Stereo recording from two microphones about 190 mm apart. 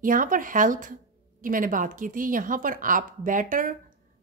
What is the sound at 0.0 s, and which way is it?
A woman's voice, 45° right (ahead or behind).